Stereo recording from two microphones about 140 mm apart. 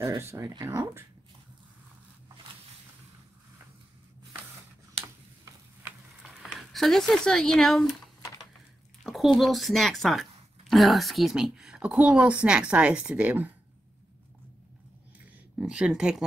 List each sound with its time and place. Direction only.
0.0 s speech: 20° right (ahead or behind)
5.4 s stir: 15° right (ahead or behind)
6.2 s speech: centre (ahead or behind)
9.0 s a woman's voice: centre (ahead or behind)
15.5 s speech: 5° right (ahead or behind)